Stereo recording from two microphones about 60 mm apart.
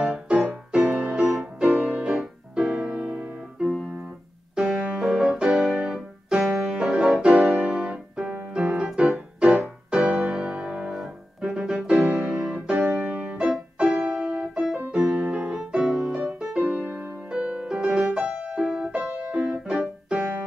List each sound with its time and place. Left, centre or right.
0.0 s music: centre
4.9 s music: centre
10.9 s piano: centre
11.9 s music: right
12.3 s music: centre
15.3 s music: centre
16.6 s music: right
17.3 s music: centre
20.2 s music: right